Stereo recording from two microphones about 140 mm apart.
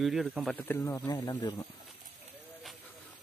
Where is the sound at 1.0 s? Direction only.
30° left (ahead or behind).